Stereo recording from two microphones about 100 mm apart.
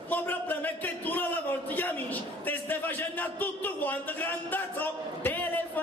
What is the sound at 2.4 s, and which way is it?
A man's voice, 20° left (ahead or behind).